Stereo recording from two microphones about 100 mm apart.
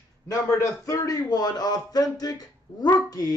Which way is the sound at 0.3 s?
35° left (ahead or behind).